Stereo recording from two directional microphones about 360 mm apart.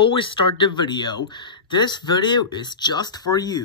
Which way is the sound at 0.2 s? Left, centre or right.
Centre.